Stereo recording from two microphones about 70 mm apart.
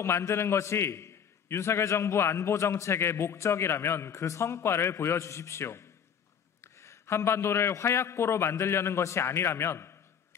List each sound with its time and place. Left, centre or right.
0.0 s a man's voice: left